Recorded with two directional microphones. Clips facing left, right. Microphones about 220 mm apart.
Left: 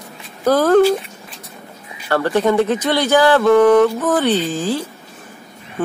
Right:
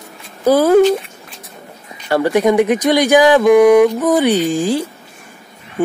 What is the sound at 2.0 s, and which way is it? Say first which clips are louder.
Speech: right 3 dB; 15° right (ahead or behind).